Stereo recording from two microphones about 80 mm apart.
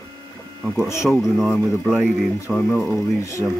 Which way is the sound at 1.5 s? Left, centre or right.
Centre.